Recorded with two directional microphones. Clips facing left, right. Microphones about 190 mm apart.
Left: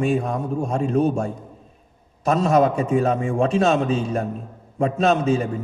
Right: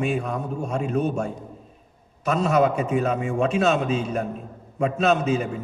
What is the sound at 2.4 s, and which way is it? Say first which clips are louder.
A man's voice: left 2 dB; 40° left (ahead or behind).